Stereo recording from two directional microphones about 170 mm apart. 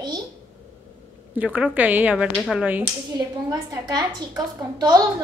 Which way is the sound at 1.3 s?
10° right (ahead or behind).